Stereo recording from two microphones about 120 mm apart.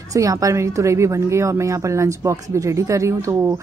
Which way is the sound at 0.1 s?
30° right (ahead or behind).